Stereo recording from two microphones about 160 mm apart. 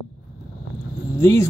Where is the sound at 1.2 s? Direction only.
20° left (ahead or behind).